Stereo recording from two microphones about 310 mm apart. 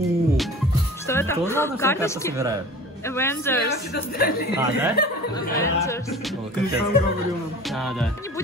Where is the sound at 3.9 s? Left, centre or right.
Left.